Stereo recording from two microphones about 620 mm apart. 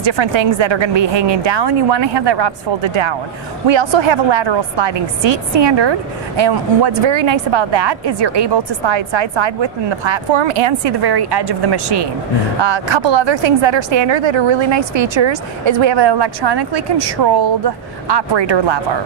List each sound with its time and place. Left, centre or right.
0.0 s a woman's voice: right